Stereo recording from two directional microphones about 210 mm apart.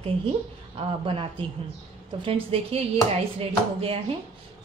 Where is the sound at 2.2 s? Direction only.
25° right (ahead or behind).